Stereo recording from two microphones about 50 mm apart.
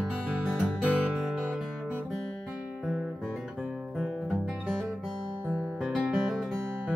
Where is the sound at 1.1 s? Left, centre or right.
Centre.